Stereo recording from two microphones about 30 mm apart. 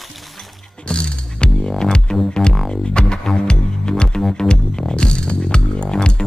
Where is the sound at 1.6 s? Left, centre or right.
Left.